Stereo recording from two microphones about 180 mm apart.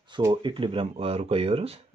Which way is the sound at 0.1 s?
25° right (ahead or behind).